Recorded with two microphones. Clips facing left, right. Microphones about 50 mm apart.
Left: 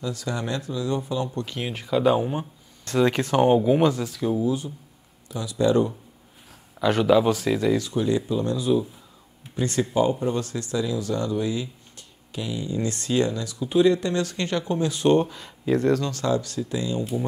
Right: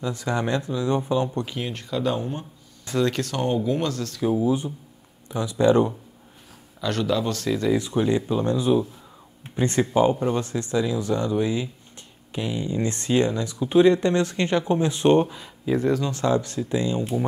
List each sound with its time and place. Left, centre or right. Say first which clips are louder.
0.0 s speech: right 3 dB; right
1.6 s speech: left 7 dB; centre
4.2 s speech: right 3 dB; centre
4.5 s speech: right 2 dB; right
6.8 s speech: left 5 dB; centre
7.7 s speech: right 1 dB; right
15.2 s speech: left 1 dB; centre
16.1 s speech: right 2 dB; right